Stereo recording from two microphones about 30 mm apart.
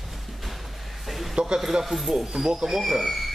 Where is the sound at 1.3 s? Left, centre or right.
Right.